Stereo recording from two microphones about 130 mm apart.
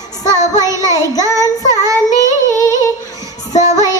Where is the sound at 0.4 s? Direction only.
25° right (ahead or behind).